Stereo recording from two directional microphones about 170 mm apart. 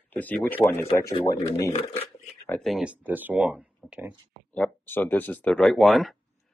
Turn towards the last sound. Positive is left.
turn(degrees=0)  # may be behind; listen again after turning